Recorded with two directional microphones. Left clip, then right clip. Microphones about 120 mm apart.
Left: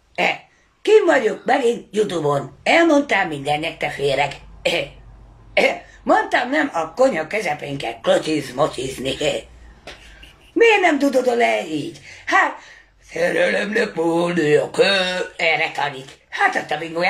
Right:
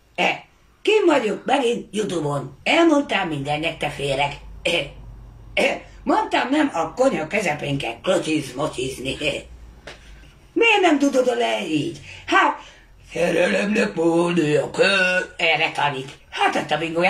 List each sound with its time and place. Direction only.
0.8 s speech: 15° right (ahead or behind)
5.5 s cough: 15° right (ahead or behind)
6.5 s speech: 15° right (ahead or behind)
7.7 s speech: 15° right (ahead or behind)
10.6 s speech: 15° right (ahead or behind)